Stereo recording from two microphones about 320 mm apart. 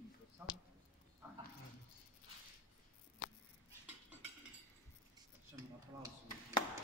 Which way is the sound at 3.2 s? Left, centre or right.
Left.